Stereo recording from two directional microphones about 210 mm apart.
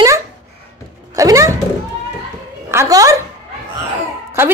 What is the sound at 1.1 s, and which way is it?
Music, 15° right (ahead or behind).